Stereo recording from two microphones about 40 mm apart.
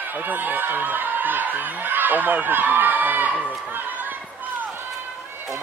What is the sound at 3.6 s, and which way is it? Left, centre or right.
Speech, right.